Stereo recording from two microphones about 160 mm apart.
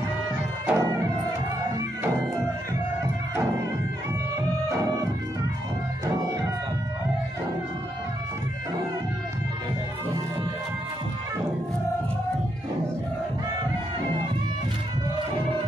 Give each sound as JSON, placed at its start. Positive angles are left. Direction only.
{"t": 0.7, "sound": "music", "side_deg": -15}